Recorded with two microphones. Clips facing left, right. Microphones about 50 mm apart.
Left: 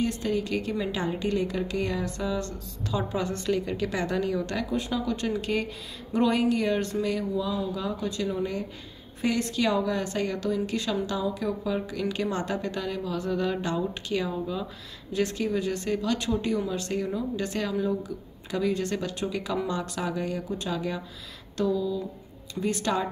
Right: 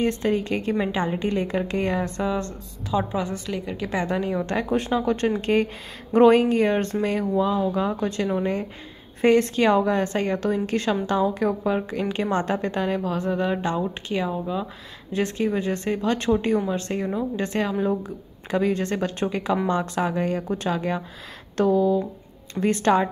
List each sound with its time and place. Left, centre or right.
0.0 s speech: right
3.5 s a woman's voice: centre
4.6 s a sound: right
4.9 s speech: right
21.5 s a sound: right
22.5 s speech: right